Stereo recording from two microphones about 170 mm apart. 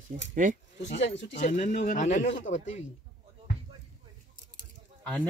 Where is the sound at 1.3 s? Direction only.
45° left (ahead or behind).